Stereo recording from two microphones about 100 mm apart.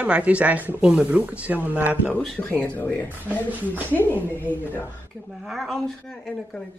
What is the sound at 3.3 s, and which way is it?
Speech, 15° right (ahead or behind).